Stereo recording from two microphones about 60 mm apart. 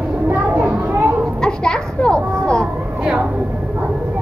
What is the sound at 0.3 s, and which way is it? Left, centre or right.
Children playing, right.